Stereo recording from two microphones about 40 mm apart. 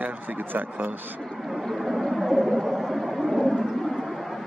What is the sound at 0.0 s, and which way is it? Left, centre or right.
Speech, right.